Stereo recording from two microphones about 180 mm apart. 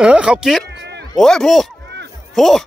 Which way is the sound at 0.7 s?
70° right (ahead or behind).